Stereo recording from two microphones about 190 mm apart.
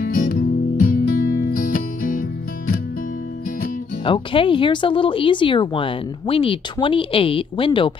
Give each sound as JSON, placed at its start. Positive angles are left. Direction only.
{"t": 0.0, "sound": "music", "side_deg": 50}
{"t": 4.0, "sound": "speech", "side_deg": 25}